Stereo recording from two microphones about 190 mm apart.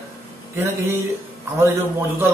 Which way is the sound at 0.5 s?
10° right (ahead or behind).